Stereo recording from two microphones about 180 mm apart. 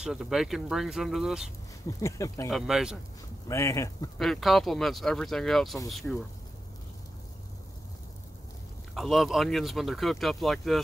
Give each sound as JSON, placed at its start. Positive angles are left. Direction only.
{"t": 0.0, "sound": "speech", "side_deg": 0}
{"t": 1.9, "sound": "speech", "side_deg": 20}
{"t": 2.5, "sound": "speech", "side_deg": 0}
{"t": 3.4, "sound": "speech", "side_deg": 15}
{"t": 4.2, "sound": "speech", "side_deg": 0}
{"t": 8.9, "sound": "speech", "side_deg": 0}